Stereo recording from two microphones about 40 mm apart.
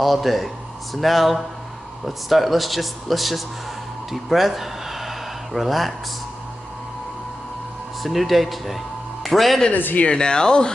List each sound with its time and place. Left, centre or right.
0.0 s a man's voice: centre
4.1 s a sound: centre
8.0 s a man's voice: centre
9.9 s speech: left